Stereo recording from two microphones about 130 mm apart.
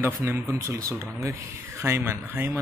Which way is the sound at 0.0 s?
20° right (ahead or behind).